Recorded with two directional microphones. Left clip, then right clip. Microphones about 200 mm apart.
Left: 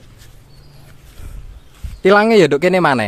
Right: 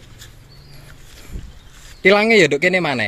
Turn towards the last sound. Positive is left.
turn(degrees=30)  # may be behind; listen again after turning